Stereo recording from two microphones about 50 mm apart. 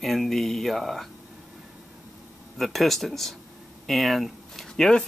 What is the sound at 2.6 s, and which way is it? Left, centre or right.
Speech, centre.